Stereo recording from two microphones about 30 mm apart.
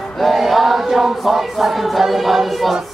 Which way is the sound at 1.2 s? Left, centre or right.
Centre.